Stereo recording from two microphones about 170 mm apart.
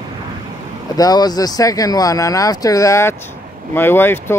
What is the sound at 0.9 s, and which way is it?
Speech, 20° left (ahead or behind).